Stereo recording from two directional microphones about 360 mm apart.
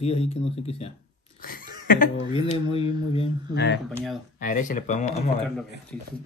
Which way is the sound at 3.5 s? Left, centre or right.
Left.